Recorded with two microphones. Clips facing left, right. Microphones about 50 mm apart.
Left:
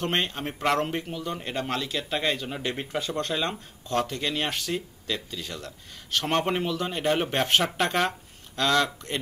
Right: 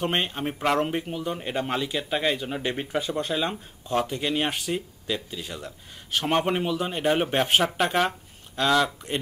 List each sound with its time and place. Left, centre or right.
0.0 s speech: centre